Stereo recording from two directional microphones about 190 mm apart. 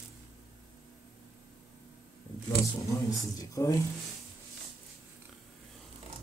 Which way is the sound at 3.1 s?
15° left (ahead or behind).